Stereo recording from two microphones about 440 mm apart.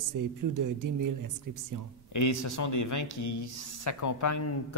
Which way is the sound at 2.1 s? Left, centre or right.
Left.